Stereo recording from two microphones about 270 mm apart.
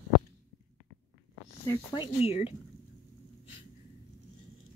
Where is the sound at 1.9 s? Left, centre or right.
Left.